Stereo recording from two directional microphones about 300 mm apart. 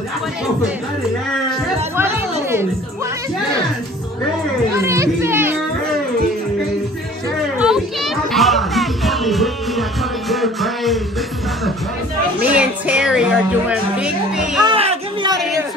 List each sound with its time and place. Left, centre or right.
4.7 s music: centre
7.5 s music: centre
12.4 s music: centre
14.6 s music: centre